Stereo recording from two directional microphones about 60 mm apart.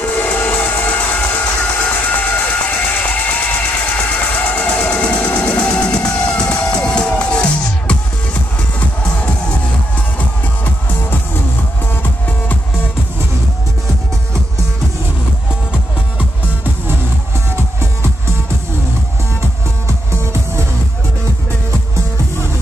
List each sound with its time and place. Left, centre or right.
0.0 s train: left
2.4 s vehicle: left
4.3 s music: left
4.6 s train: left
8.7 s music: centre
10.1 s music: left